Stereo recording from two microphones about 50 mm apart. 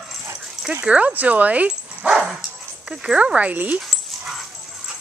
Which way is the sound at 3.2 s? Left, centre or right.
Right.